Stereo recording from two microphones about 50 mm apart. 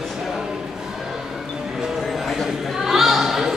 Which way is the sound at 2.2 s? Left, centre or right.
Centre.